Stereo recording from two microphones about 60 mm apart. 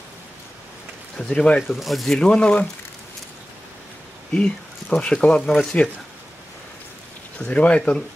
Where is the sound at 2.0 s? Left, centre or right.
Centre.